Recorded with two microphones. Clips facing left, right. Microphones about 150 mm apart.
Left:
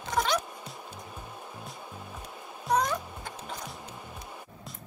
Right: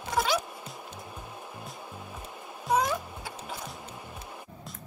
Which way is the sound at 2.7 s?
5° right (ahead or behind).